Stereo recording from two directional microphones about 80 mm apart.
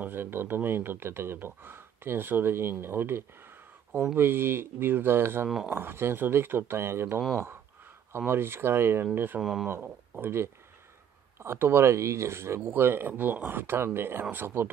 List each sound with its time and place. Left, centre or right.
0.0 s speech: right
8.3 s speech: right
9.4 s speech: centre
10.1 s speech: right